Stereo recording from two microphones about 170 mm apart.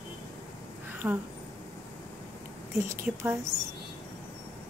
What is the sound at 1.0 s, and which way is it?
Speech, 15° right (ahead or behind).